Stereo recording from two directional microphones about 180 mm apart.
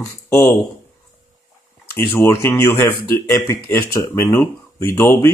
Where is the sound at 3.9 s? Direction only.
15° left (ahead or behind).